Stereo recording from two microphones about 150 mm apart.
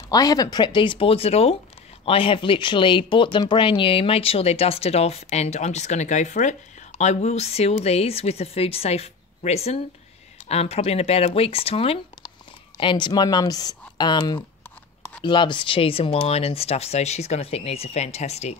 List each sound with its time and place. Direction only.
0.1 s speech: 25° left (ahead or behind); by 18.6 s 45° left (ahead or behind)